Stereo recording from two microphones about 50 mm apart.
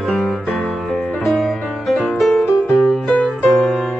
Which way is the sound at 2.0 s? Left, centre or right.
Centre.